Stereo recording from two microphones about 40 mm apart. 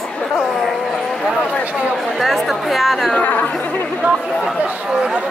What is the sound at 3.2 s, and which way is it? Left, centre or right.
Speech, left.